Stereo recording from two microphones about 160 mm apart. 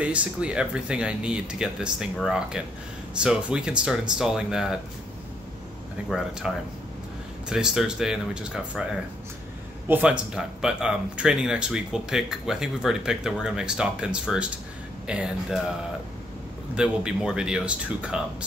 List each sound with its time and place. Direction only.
0.0 s speech: 10° right (ahead or behind)
6.0 s speech: 5° right (ahead or behind)
9.8 s speech: 10° right (ahead or behind)
16.7 s speech: 5° right (ahead or behind)